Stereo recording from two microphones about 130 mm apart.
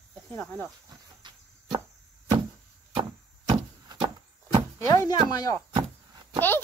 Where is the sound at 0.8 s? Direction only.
35° right (ahead or behind).